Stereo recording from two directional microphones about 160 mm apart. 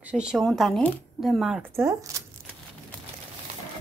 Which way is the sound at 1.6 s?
15° right (ahead or behind).